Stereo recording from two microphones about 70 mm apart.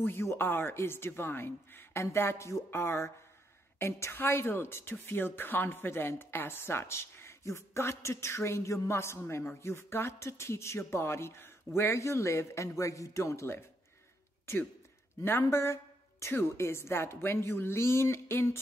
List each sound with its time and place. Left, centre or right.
0.0 s a woman's voice: left
15.5 s a woman's voice: left